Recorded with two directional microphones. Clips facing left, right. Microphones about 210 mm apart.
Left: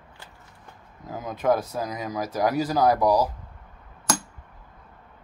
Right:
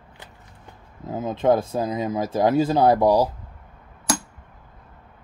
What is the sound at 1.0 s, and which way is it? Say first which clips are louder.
Speech: right 4 dB; 25° right (ahead or behind).